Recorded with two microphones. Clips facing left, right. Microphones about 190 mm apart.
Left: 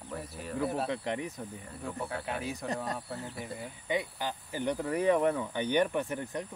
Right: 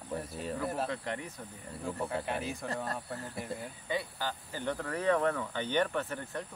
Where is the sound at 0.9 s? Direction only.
15° left (ahead or behind).